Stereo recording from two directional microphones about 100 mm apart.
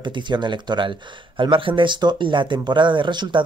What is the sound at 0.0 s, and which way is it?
Speech, 50° right (ahead or behind).